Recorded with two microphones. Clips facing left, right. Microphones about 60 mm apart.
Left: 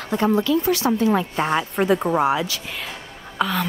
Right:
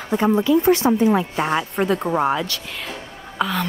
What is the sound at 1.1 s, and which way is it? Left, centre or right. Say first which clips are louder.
A woman's voice: right 1 dB; centre.